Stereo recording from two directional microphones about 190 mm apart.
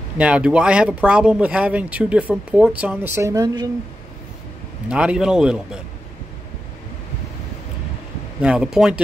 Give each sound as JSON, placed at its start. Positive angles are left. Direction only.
{"t": 0.2, "sound": "speech", "side_deg": -5}
{"t": 4.8, "sound": "speech", "side_deg": -5}
{"t": 8.4, "sound": "speech", "side_deg": -5}